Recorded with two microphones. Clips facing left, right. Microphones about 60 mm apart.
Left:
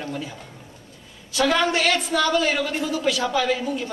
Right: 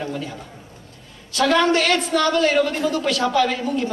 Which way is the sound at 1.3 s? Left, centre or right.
Centre.